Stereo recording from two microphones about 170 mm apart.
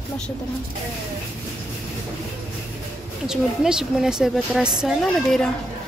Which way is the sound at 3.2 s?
5° right (ahead or behind).